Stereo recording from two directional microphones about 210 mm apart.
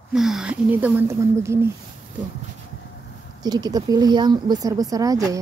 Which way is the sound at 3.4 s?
20° right (ahead or behind).